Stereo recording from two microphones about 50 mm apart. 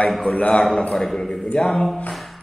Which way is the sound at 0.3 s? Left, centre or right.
Left.